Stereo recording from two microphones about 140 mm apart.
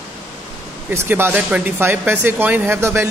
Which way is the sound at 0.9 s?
15° right (ahead or behind).